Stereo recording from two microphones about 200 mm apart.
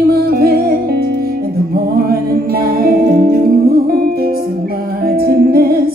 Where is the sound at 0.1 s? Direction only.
50° right (ahead or behind).